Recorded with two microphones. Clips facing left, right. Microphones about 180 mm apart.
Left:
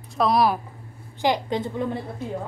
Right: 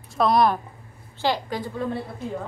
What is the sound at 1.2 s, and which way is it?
Speech, 20° left (ahead or behind).